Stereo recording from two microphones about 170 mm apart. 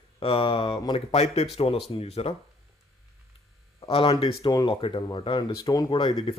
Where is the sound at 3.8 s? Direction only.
35° left (ahead or behind).